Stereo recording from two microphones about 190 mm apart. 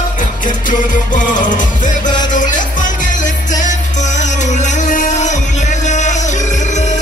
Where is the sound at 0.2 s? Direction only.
45° left (ahead or behind).